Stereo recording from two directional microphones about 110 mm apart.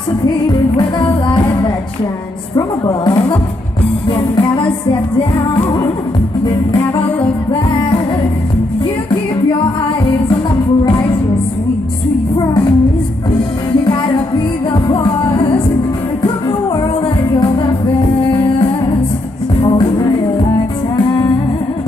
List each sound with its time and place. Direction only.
0.7 s music: 45° left (ahead or behind)
2.5 s music: 40° left (ahead or behind)
10.9 s music: 50° left (ahead or behind)
14.7 s music: 50° left (ahead or behind)